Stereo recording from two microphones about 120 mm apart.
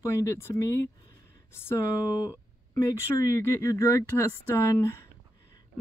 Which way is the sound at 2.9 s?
25° left (ahead or behind).